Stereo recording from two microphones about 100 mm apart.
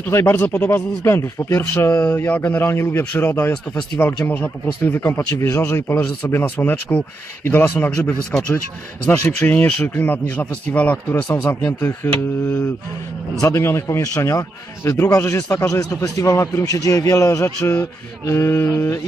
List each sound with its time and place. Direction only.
0.0 s a man's voice: 25° left (ahead or behind)
11.4 s a man's voice: 25° left (ahead or behind)